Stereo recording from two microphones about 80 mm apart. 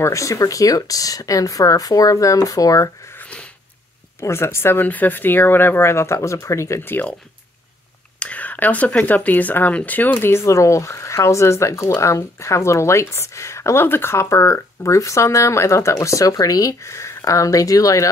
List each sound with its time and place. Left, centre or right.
0.0 s speech: left
3.1 s a sound: centre
4.2 s speech: left
6.9 s speech: left
8.2 s speech: centre; by 18.0 s left